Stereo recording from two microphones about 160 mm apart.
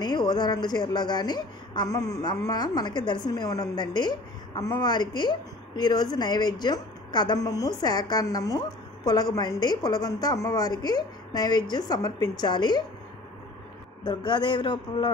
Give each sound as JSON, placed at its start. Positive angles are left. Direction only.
{"t": 0.0, "sound": "speech", "side_deg": 25}
{"t": 14.0, "sound": "speech", "side_deg": 30}